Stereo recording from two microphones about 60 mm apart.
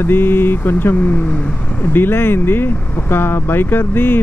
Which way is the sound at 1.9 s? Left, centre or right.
Left.